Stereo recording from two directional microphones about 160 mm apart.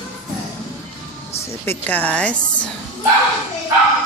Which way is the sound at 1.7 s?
10° left (ahead or behind).